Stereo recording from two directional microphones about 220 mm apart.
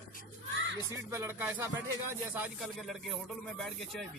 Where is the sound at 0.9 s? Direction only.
10° right (ahead or behind).